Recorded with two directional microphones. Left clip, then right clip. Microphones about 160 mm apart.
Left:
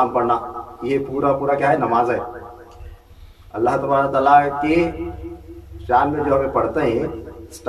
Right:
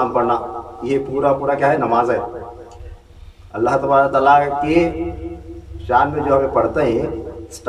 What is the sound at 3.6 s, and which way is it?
A man's voice, centre (ahead or behind).